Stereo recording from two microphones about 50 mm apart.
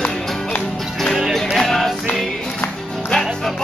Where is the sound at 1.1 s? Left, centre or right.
Centre.